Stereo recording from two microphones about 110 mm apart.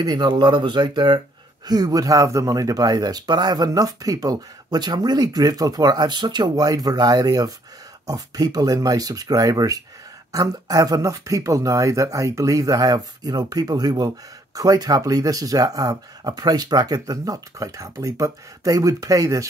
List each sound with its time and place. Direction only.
0.0 s speech: 40° right (ahead or behind)